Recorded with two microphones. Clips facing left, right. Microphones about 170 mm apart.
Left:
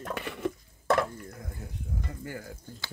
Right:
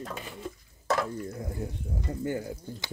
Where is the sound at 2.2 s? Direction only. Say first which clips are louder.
Right 8 dB; 25° right (ahead or behind).